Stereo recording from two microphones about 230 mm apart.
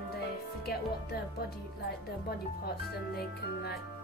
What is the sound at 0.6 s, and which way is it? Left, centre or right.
Speech, left.